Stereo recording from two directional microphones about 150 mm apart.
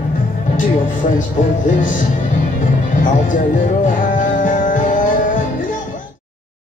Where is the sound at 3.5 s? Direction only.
60° left (ahead or behind).